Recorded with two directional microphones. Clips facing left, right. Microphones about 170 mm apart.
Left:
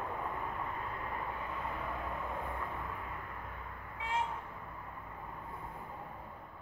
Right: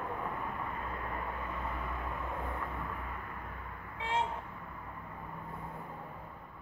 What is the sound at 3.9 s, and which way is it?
Vehicle, 25° right (ahead or behind).